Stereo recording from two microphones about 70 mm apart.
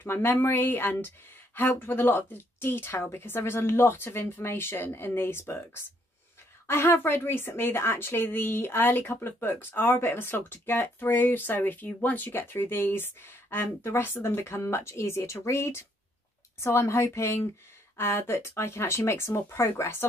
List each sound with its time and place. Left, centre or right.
0.0 s a woman's voice: left
6.7 s a woman's voice: left